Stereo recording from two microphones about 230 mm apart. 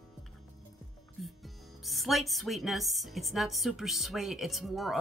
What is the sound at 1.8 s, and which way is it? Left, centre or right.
A woman's voice, centre.